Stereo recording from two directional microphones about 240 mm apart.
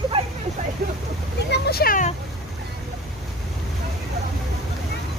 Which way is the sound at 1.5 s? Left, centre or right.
Left.